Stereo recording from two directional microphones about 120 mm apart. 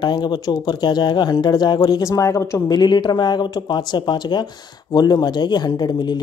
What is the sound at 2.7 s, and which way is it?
Speech, 35° left (ahead or behind).